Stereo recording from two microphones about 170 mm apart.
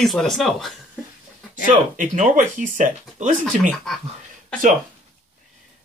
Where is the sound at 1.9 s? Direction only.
45° right (ahead or behind).